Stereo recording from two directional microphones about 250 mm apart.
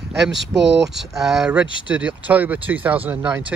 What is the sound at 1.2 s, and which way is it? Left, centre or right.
Speech, centre.